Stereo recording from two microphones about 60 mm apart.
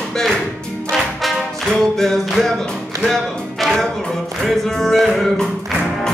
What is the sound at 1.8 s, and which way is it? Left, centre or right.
Music, centre.